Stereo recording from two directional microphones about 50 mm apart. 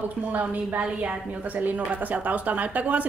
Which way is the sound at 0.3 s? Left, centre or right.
Right.